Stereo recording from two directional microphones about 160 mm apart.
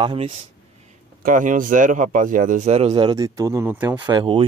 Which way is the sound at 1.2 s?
55° right (ahead or behind).